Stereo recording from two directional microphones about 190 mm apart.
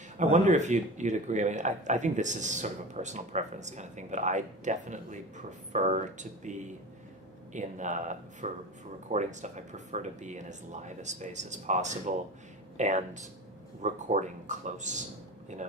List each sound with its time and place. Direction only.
0.2 s speech: 40° right (ahead or behind)